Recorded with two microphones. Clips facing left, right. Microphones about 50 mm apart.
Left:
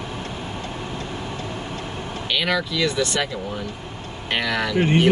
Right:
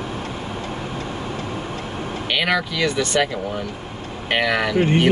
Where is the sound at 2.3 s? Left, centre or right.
Centre.